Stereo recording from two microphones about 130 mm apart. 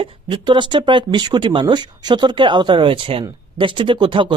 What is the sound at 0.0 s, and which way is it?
Speech, 40° right (ahead or behind).